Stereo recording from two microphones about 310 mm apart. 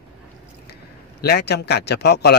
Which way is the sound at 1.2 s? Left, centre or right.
Left.